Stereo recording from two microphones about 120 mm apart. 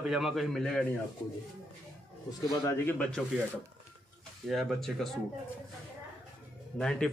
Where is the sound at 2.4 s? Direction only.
30° left (ahead or behind).